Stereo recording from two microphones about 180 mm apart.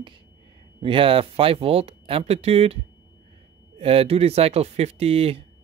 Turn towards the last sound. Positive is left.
turn(degrees=-35)  # may be behind; listen again after turning